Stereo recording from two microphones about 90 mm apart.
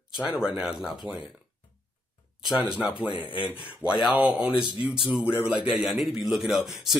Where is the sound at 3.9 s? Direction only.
15° right (ahead or behind).